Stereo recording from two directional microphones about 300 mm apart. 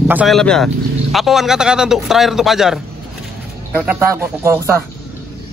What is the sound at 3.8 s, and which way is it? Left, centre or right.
Speech, centre.